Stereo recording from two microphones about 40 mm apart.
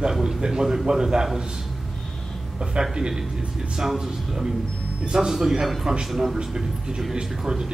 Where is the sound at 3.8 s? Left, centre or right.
Centre.